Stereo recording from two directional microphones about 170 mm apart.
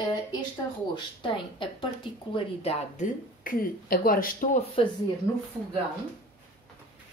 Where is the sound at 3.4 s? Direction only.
55° left (ahead or behind).